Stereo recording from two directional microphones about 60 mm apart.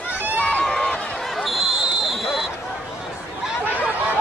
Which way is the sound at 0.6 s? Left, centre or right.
Centre.